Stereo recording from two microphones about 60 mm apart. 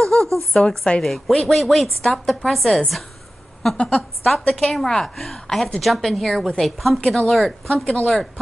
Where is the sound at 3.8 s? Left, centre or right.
Centre.